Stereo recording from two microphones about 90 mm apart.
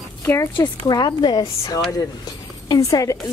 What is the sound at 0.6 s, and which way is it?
A woman's voice, 50° left (ahead or behind).